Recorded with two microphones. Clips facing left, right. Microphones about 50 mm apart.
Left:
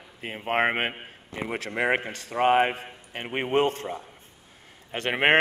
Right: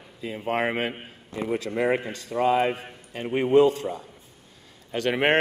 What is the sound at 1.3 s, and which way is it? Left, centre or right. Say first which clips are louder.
A man's voice: right 3 dB; left.